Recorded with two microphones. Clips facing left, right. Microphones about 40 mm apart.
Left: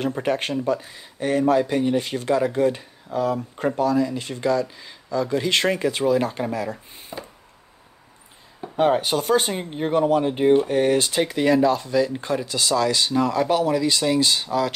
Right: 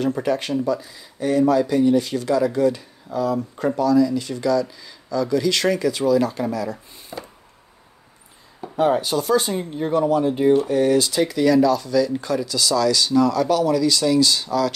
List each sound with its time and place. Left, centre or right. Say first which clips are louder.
0.0 s speech: right 2 dB; left
8.7 s speech: even; left